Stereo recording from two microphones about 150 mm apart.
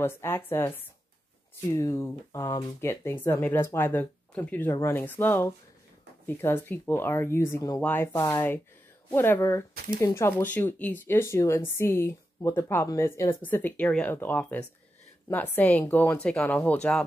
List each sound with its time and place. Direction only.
0.0 s speech: 15° left (ahead or behind)